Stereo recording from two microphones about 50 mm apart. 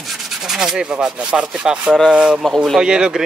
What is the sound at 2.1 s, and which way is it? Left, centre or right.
Speech, centre.